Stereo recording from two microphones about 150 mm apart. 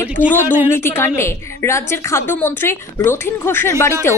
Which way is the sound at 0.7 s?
15° left (ahead or behind).